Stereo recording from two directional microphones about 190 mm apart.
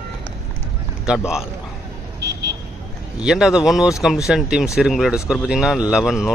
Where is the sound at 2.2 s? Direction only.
60° right (ahead or behind).